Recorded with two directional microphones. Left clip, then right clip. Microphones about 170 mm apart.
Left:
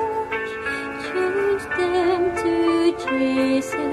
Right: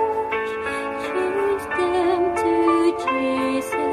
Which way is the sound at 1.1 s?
35° right (ahead or behind).